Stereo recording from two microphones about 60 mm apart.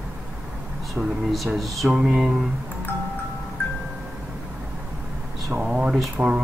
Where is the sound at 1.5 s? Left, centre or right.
Centre.